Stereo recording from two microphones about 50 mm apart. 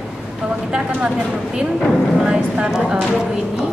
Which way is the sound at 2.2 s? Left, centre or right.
Right.